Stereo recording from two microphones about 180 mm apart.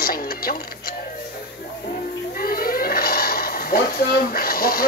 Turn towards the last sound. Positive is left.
turn(degrees=55)  # may be behind; listen again after turning